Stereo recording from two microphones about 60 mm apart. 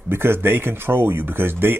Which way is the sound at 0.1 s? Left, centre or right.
Right.